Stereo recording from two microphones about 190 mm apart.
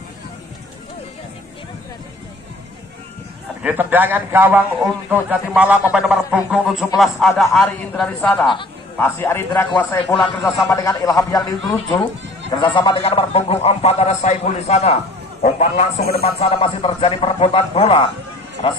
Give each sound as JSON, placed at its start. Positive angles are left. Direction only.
{"t": 3.6, "sound": "a man's voice", "side_deg": -10}
{"t": 9.5, "sound": "a man's voice", "side_deg": 20}
{"t": 10.1, "sound": "a man's voice", "side_deg": 0}
{"t": 10.7, "sound": "a man's voice", "side_deg": 15}